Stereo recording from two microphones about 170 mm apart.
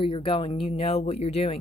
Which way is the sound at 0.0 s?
30° left (ahead or behind).